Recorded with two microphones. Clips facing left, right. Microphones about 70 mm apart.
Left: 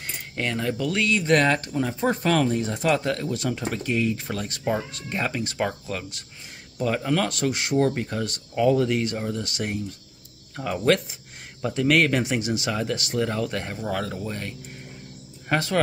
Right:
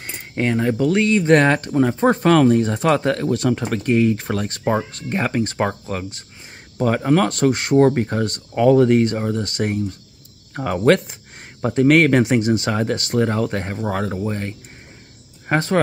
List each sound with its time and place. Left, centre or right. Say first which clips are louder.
0.0 s speech: right 7 dB; right
6.8 s speech: right 7 dB; right